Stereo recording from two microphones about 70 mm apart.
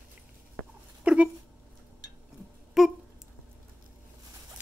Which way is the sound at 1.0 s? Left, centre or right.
Centre.